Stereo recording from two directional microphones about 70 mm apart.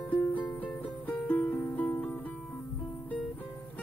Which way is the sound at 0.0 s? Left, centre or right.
Left.